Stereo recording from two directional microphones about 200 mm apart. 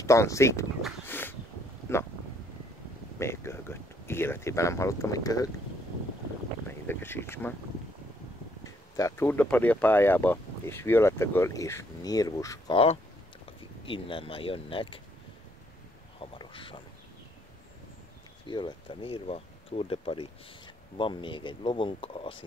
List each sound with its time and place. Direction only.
0.0 s speech: 15° left (ahead or behind)
1.0 s a sound: 10° left (ahead or behind)
1.9 s speech: 10° left (ahead or behind)
3.2 s speech: 15° left (ahead or behind)
6.7 s speech: 10° left (ahead or behind)
8.6 s speech: 15° left (ahead or behind)
12.7 s speech: 30° left (ahead or behind)
16.2 s a sound: 25° left (ahead or behind)
18.5 s speech: 25° left (ahead or behind)